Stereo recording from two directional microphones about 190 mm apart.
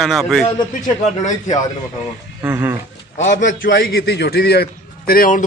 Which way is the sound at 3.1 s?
40° left (ahead or behind).